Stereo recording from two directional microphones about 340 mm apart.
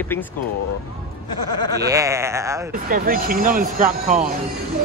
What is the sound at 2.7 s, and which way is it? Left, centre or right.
Speech, right.